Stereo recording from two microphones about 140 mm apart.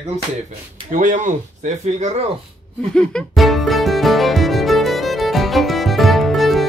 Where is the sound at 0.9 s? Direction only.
65° right (ahead or behind).